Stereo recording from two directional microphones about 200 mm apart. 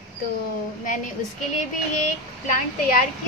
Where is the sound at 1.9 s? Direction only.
40° left (ahead or behind).